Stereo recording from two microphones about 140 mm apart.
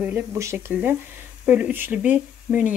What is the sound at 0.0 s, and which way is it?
A woman's voice, 20° right (ahead or behind).